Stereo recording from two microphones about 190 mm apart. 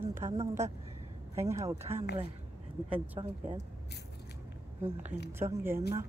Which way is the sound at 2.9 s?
25° right (ahead or behind).